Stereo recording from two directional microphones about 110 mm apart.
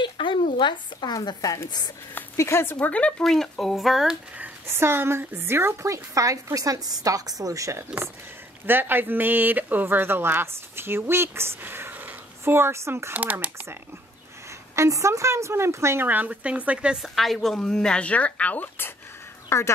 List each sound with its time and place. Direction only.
0.0 s a woman's voice: 45° left (ahead or behind)
2.3 s speech: 25° left (ahead or behind); by 4.2 s 5° right (ahead or behind)
4.4 s speech: 20° right (ahead or behind)
8.6 s speech: 20° right (ahead or behind)
13.1 s a woman's voice: 15° right (ahead or behind)
14.8 s a woman's voice: 30° right (ahead or behind); by 19.7 s 25° left (ahead or behind)